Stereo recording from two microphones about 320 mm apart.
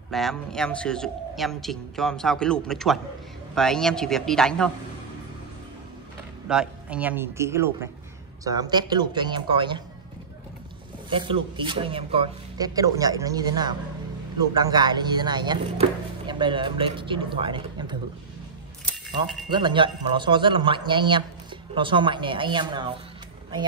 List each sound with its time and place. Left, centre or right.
0.1 s a man's voice: centre
6.5 s speech: centre
11.1 s speech: centre
19.5 s speech: centre